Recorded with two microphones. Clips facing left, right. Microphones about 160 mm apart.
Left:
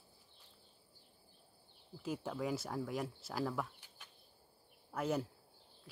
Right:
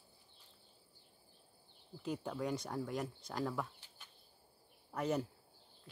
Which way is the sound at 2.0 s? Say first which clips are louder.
Even; 5° left (ahead or behind).